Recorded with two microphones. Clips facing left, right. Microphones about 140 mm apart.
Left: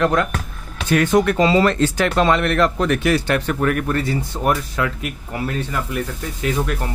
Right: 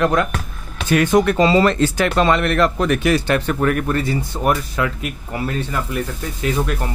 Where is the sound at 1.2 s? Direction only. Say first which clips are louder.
Right 1 dB; 30° right (ahead or behind).